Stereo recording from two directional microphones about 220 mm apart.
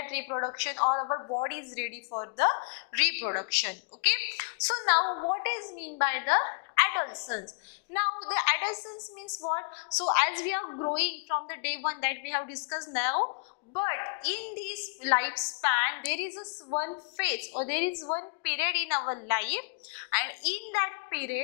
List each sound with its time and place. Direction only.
0.0 s a woman's voice: 15° left (ahead or behind)
0.9 s a woman's voice: 25° left (ahead or behind)
5.1 s a woman's voice: 20° left (ahead or behind)
5.4 s a woman's voice: 10° left (ahead or behind)
10.4 s a woman's voice: 10° left (ahead or behind)
10.7 s a woman's voice: 25° left (ahead or behind)
11.0 s a woman's voice: 15° left (ahead or behind)